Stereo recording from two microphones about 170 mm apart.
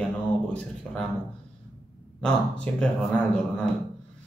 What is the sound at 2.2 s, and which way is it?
Speech, 5° left (ahead or behind).